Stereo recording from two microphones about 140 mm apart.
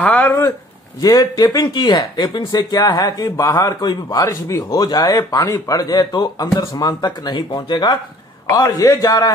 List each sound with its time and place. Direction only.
0.0 s speech: 10° left (ahead or behind)
1.0 s speech: 25° left (ahead or behind)